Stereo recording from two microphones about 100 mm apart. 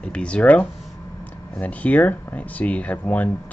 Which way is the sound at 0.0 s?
10° left (ahead or behind).